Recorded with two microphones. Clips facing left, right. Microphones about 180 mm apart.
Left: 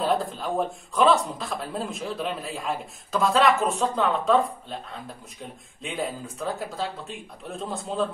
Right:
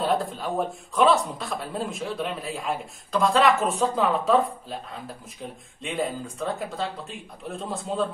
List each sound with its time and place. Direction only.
0.0 s a man's voice: centre (ahead or behind)
5.8 s a man's voice: centre (ahead or behind)